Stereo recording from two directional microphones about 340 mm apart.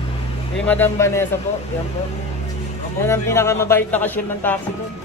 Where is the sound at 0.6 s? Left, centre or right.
Centre.